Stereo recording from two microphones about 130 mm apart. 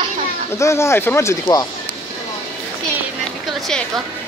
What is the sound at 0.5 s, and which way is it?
Speech, 20° left (ahead or behind).